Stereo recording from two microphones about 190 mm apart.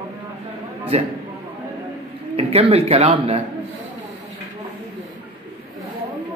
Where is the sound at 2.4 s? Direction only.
30° right (ahead or behind).